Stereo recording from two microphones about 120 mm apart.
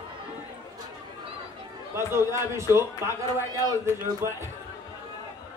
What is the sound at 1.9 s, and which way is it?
Speech, 20° right (ahead or behind).